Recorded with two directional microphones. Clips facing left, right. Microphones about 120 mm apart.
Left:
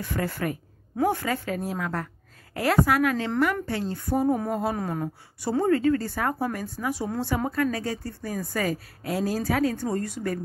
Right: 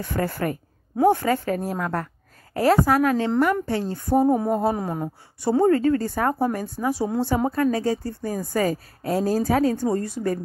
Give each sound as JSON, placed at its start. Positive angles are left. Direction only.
{"t": 0.0, "sound": "a woman's voice", "side_deg": -40}
{"t": 0.9, "sound": "a woman's voice", "side_deg": -30}
{"t": 2.5, "sound": "a woman's voice", "side_deg": -35}
{"t": 4.7, "sound": "speech", "side_deg": -25}
{"t": 5.6, "sound": "a woman's voice", "side_deg": -35}